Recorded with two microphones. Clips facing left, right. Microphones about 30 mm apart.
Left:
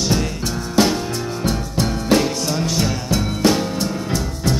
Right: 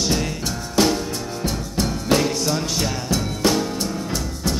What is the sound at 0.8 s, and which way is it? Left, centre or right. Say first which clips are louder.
Music: left 1 dB; centre.